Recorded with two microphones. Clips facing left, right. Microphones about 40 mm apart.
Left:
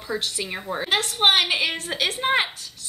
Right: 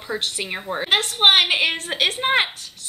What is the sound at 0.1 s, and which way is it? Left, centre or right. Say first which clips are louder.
Speech: right 2 dB; right.